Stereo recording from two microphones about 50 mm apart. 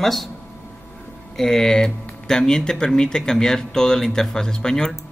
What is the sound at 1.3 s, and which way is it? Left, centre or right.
Speech, centre.